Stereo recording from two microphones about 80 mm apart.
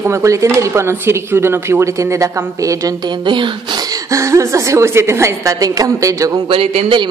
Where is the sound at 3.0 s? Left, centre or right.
Right.